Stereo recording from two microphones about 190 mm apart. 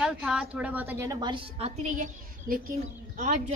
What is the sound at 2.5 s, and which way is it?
A woman's voice, 50° right (ahead or behind).